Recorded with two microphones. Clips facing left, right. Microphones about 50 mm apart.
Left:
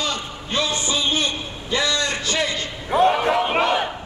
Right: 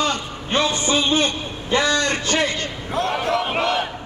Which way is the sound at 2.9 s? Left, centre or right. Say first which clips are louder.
Left 5 dB; centre.